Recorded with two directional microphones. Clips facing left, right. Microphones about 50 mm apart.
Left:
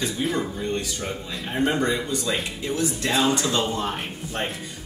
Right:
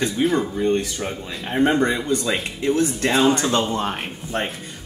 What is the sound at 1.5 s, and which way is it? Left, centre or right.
Speech, right.